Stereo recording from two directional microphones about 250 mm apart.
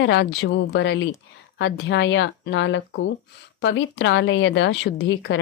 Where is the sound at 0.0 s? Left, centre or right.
Left.